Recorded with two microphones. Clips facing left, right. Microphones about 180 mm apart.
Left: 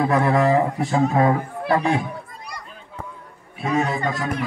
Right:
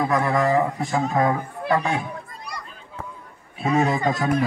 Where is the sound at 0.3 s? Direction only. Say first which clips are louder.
Left 2 dB; 30° left (ahead or behind).